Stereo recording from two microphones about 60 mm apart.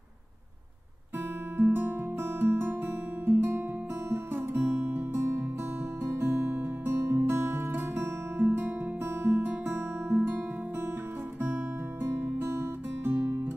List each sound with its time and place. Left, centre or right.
1.6 s guitar: right
4.1 s music: right
9.8 s guitar: right
11.4 s music: right